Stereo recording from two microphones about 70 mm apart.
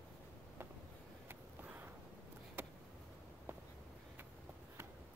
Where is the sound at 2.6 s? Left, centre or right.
Right.